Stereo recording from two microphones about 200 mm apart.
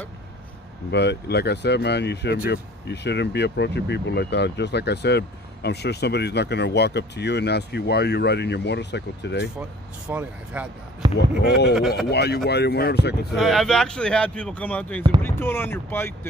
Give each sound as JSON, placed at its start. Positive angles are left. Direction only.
{"t": 0.9, "sound": "speech", "side_deg": 55}
{"t": 10.0, "sound": "speech", "side_deg": -5}
{"t": 11.4, "sound": "speech", "side_deg": 55}
{"t": 13.4, "sound": "speech", "side_deg": 0}